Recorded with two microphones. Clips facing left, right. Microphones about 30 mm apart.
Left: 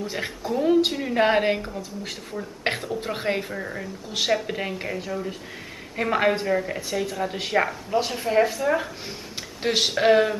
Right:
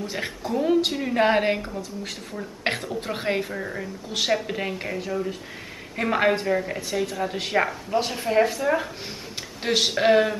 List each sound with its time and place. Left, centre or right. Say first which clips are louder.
0.0 s a woman's voice: even; centre